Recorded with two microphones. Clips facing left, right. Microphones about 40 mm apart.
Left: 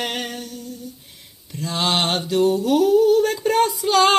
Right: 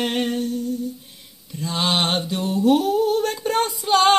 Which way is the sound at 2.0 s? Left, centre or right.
Right.